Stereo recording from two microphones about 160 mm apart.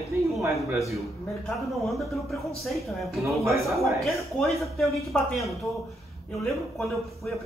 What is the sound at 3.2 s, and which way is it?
Speech, 20° right (ahead or behind).